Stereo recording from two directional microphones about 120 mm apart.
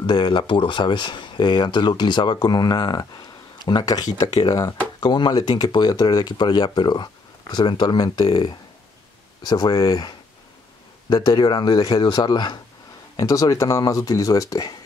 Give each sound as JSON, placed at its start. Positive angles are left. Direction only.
{"t": 0.0, "sound": "speech", "side_deg": 40}